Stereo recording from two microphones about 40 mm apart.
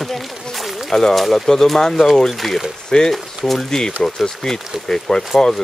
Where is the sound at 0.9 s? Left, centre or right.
Centre.